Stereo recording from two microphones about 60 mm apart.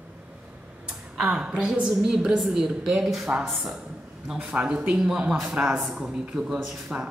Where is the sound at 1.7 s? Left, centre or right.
Centre.